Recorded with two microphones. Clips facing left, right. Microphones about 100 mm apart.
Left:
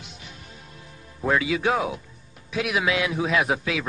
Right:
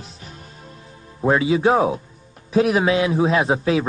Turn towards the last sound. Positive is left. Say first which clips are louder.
# right 5 dB
turn(degrees=-35)  # may be behind; listen again after turning